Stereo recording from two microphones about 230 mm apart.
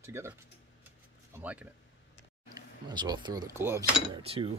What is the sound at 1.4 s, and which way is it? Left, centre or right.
Speech, centre.